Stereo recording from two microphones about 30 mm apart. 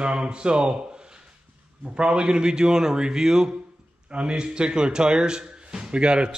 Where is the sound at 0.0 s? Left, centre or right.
Right.